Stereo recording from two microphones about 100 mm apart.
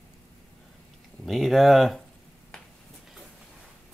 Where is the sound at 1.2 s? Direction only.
Centre (ahead or behind).